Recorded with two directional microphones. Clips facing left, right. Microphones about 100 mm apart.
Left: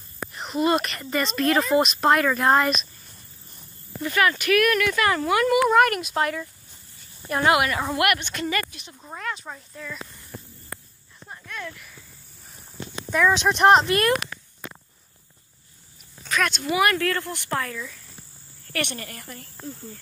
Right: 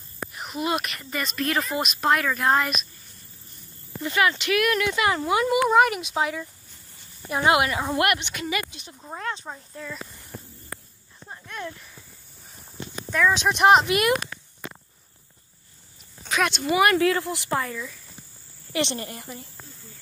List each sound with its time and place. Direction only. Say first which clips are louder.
0.3 s speech: left 5 dB; 5° right (ahead or behind)
4.0 s speech: left 1 dB; 20° right (ahead or behind)
7.4 s a woman's voice: even; 25° right (ahead or behind)
8.3 s speech: left 2 dB; 10° right (ahead or behind)
8.6 s speech: right 1 dB; 30° right (ahead or behind)
11.4 s speech: right 1 dB; 25° right (ahead or behind)
13.1 s speech: left 1 dB; centre (ahead or behind)
16.3 s speech: right 1 dB; 5° right (ahead or behind)
17.0 s speech: right 4 dB; 10° right (ahead or behind)
18.7 s a woman's voice: right 3 dB; 25° right (ahead or behind)
19.6 s cricket: left 11 dB; 45° left (ahead or behind)